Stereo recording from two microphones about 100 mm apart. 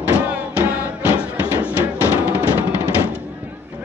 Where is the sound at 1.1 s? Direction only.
20° right (ahead or behind).